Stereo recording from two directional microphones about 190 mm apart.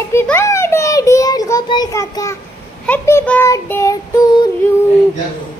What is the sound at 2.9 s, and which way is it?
Speech, 10° left (ahead or behind).